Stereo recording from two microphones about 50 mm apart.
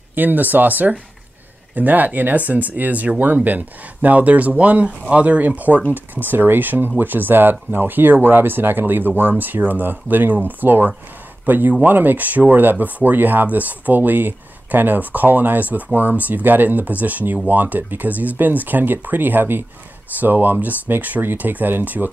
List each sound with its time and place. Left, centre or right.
0.1 s speech: right
6.2 s speech: right